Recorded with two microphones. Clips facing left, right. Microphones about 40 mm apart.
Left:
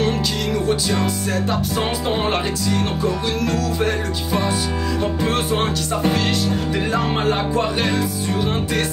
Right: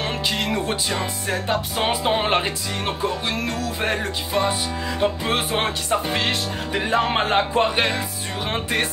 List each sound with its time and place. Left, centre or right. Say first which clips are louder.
0.0 s music: left 3 dB; right